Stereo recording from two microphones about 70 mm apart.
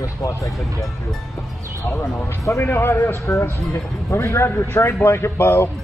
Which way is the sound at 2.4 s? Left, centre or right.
Left.